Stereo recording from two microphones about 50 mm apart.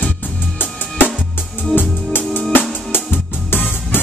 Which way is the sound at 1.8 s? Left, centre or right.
Left.